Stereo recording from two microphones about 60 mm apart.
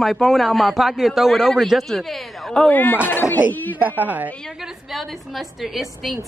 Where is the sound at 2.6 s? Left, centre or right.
Left.